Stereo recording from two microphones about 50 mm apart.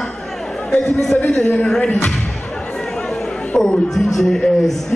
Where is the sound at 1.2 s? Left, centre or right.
Left.